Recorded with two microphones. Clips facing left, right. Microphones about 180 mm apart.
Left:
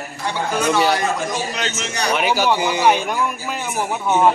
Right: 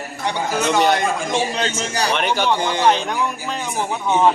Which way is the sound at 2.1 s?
5° left (ahead or behind).